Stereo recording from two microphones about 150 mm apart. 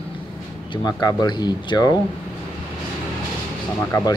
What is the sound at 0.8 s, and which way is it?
Speech, 25° left (ahead or behind).